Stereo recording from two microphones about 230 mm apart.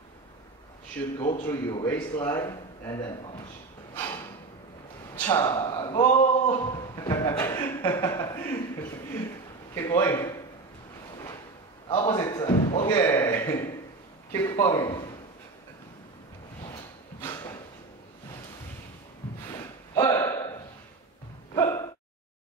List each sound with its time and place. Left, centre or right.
1.1 s a man's voice: left
3.9 s a sound: centre
5.1 s speech: centre
6.1 s speech: left; by 8.4 s centre
9.8 s speech: centre
11.9 s a man's voice: left
17.3 s a sound: centre
19.4 s a sound: centre
21.5 s gasp: centre